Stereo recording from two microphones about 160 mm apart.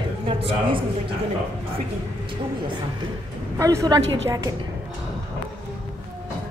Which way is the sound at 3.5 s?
20° right (ahead or behind).